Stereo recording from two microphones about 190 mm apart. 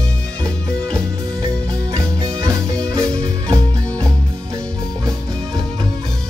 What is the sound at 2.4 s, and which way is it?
Music, 15° right (ahead or behind).